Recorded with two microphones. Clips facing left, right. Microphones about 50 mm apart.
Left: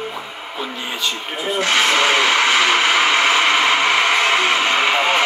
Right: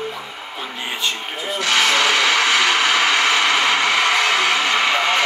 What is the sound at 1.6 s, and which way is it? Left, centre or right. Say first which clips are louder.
Radio: left 1 dB; left.